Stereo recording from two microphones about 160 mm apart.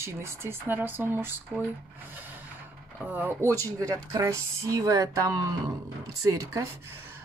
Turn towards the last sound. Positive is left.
turn(degrees=-20)  # may be behind; listen again after turning